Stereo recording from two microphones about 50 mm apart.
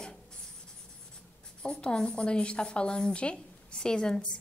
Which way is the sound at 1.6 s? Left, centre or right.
Left.